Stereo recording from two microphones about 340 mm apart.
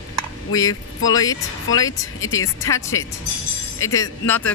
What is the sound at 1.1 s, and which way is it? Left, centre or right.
Speech, centre.